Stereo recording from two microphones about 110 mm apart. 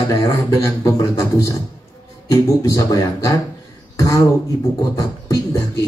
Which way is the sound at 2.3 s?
30° left (ahead or behind).